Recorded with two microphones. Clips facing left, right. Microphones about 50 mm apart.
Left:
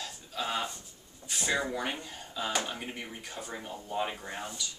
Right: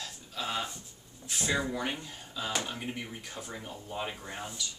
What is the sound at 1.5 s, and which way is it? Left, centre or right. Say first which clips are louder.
Speech: even; centre.